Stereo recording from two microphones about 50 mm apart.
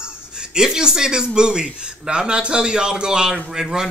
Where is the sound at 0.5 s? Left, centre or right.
Centre.